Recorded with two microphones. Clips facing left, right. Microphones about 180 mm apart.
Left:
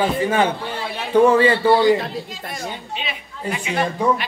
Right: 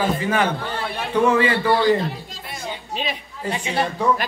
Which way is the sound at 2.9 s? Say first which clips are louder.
Right 2 dB; 35° right (ahead or behind).